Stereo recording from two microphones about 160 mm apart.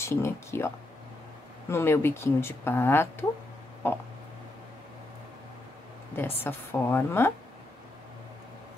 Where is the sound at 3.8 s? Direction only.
15° left (ahead or behind).